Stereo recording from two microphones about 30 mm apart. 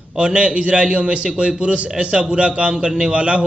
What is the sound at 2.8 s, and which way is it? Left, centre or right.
Speech, right.